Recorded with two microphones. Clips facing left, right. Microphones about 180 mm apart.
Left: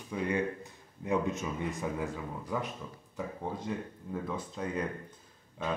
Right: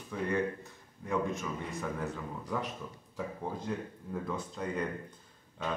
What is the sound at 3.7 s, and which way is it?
Speech, centre (ahead or behind).